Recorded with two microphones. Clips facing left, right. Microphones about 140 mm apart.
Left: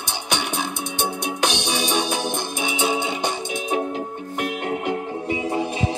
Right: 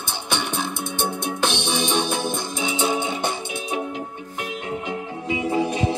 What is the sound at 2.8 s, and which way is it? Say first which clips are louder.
Music: left 1 dB; 15° left (ahead or behind).